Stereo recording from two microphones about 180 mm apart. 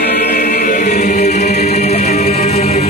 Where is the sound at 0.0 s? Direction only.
65° left (ahead or behind).